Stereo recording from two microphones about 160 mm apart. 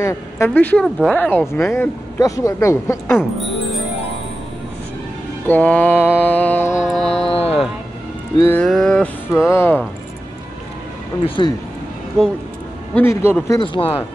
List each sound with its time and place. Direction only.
0.0 s speech: 15° left (ahead or behind)
3.2 s music: centre (ahead or behind)
5.5 s mantra: 10° left (ahead or behind)
6.8 s music: centre (ahead or behind)
7.3 s a sound: 40° left (ahead or behind)
8.4 s speech: 15° left (ahead or behind)
8.6 s speech: 5° left (ahead or behind)
11.2 s speech: 30° left (ahead or behind)
12.2 s speech: 5° left (ahead or behind)
12.9 s speech: 15° left (ahead or behind)